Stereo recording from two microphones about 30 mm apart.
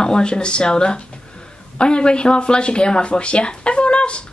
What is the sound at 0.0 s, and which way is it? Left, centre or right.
Speech, left.